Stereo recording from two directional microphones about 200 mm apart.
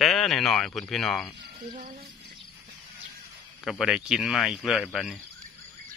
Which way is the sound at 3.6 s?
Centre (ahead or behind).